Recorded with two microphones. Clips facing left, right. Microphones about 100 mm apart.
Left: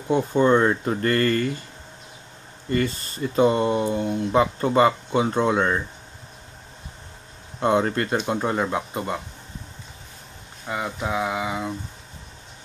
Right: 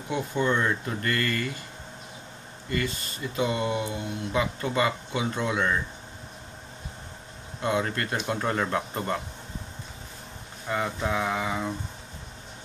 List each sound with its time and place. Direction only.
0.1 s speech: 35° left (ahead or behind)
2.7 s speech: 35° left (ahead or behind)
7.6 s speech: 30° left (ahead or behind); by 9.2 s 10° left (ahead or behind)
10.7 s a sound: 10° left (ahead or behind)